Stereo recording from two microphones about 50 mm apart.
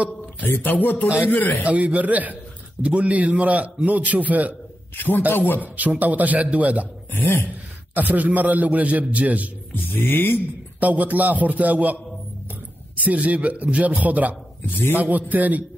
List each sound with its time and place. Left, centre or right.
0.7 s speech: left
1.0 s a man's voice: right
1.3 s speech: left
1.6 s a man's voice: right
4.9 s speech: left
5.6 s a man's voice: right
7.1 s speech: left
7.9 s a man's voice: right
9.9 s speech: left
10.8 s a man's voice: right
13.0 s a man's voice: right